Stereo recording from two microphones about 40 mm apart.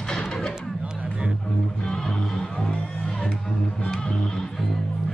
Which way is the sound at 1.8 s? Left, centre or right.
Centre.